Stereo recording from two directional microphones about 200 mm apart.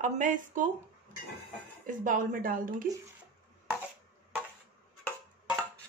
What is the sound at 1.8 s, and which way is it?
A woman's voice, 40° right (ahead or behind).